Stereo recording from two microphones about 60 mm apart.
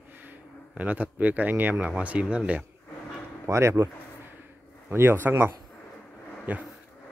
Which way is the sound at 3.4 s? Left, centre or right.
Right.